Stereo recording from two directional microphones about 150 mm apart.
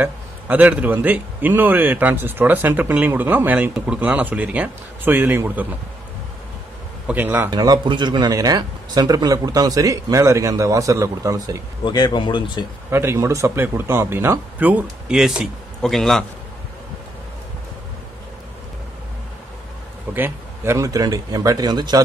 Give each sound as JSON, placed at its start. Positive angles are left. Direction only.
{"t": 0.0, "sound": "a man's voice", "side_deg": -10}
{"t": 7.1, "sound": "a man's voice", "side_deg": -10}
{"t": 7.5, "sound": "speech", "side_deg": -25}
{"t": 11.8, "sound": "speech", "side_deg": 30}
{"t": 12.9, "sound": "a man's voice", "side_deg": -15}
{"t": 20.2, "sound": "speech", "side_deg": -15}